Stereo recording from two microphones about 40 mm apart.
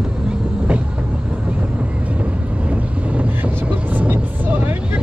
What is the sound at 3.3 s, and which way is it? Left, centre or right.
Vehicle, right.